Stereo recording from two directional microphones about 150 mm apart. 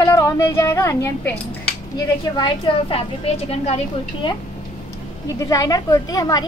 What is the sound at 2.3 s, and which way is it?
A woman's voice, 35° left (ahead or behind).